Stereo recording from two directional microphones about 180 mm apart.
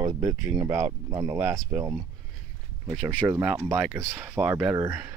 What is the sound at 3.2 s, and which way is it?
Speech, 15° right (ahead or behind).